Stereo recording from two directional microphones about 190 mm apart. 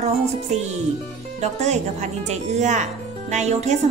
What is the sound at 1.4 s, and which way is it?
A woman's voice, 35° right (ahead or behind).